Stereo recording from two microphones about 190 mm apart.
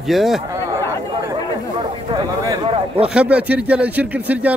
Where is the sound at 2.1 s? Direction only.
20° right (ahead or behind).